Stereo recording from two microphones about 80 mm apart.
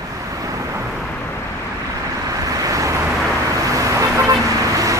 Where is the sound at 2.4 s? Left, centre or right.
Right.